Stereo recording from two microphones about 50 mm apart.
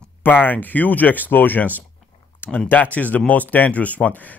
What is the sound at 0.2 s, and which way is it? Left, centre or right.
Speech, left.